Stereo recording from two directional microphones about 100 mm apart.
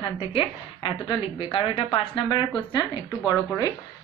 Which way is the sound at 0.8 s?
55° left (ahead or behind).